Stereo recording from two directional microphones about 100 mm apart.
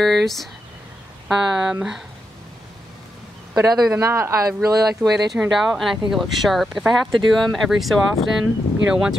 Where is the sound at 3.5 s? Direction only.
40° right (ahead or behind).